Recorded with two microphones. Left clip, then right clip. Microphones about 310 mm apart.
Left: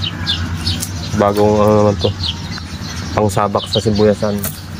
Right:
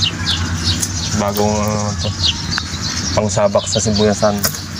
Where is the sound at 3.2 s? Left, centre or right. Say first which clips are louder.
Even; centre.